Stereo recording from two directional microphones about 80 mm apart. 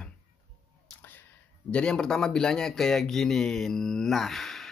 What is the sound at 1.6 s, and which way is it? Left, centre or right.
Speech, centre.